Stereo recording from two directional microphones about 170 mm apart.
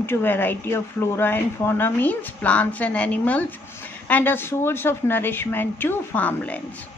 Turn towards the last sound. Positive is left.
turn(degrees=10)  # may be behind; listen again after turning